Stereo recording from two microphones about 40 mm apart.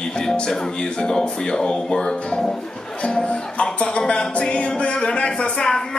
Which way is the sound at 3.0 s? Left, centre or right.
Left.